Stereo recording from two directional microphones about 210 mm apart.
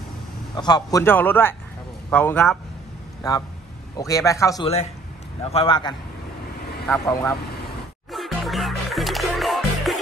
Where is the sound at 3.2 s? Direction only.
15° left (ahead or behind).